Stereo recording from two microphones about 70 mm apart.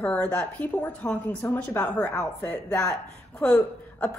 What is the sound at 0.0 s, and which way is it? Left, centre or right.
Speech, centre.